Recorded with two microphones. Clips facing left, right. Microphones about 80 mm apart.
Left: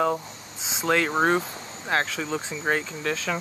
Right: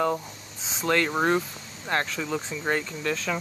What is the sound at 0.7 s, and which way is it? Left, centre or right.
Speech, centre.